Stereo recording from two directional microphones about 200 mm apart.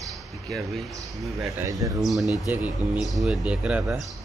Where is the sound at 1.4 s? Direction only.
15° right (ahead or behind).